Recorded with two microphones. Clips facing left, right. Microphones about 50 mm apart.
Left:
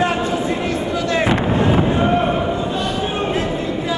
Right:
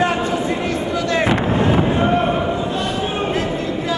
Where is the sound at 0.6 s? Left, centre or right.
Centre.